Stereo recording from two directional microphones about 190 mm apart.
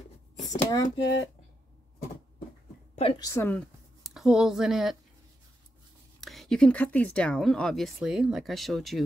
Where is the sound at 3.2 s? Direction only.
15° left (ahead or behind).